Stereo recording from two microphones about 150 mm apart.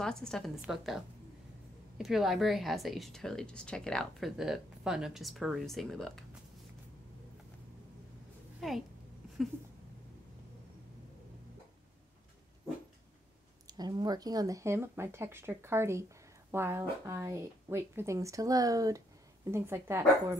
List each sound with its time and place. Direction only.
0.0 s speech: 5° left (ahead or behind)
8.5 s a woman's voice: centre (ahead or behind)
13.7 s speech: 30° right (ahead or behind)